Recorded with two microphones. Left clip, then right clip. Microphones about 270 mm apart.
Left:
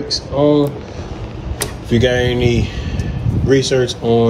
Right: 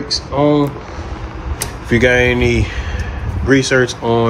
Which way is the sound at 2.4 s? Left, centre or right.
Centre.